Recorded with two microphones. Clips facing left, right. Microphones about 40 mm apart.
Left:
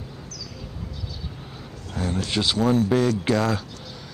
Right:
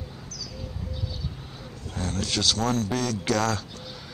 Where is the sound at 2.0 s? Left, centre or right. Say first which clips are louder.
Left 3 dB; centre.